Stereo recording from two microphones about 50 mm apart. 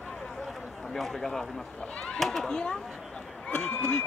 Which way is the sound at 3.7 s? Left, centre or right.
Left.